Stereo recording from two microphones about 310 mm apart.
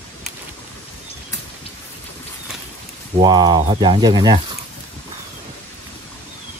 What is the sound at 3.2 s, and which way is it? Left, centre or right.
Speech, centre.